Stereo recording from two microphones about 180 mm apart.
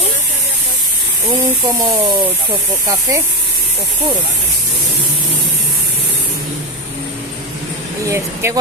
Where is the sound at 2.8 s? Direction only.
20° right (ahead or behind).